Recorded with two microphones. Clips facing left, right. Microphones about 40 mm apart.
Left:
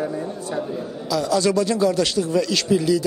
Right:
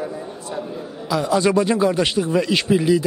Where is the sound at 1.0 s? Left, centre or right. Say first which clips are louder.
Right 2 dB; right.